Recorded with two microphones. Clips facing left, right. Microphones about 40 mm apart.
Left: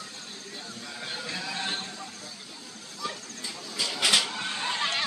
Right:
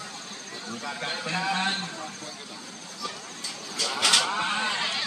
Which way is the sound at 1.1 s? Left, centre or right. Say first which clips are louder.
Right 6 dB; right.